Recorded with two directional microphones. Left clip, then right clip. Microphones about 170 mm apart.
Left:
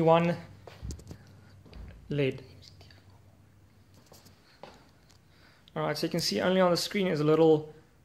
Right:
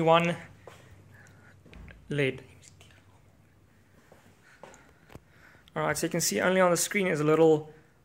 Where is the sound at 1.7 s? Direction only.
Centre (ahead or behind).